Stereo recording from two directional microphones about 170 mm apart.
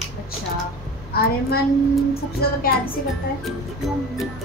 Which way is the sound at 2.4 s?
65° left (ahead or behind).